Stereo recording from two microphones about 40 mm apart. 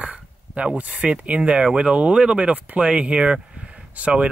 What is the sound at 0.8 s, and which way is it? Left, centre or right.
Speech, right.